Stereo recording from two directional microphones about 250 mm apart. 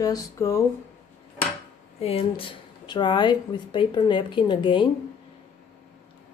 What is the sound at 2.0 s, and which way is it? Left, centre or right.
Speech, left.